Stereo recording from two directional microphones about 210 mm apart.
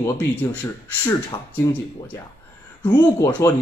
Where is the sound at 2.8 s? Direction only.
20° left (ahead or behind).